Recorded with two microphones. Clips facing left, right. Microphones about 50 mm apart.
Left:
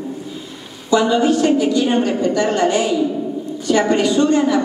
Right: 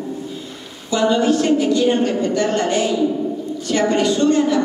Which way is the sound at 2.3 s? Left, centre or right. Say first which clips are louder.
Left 3 dB; left.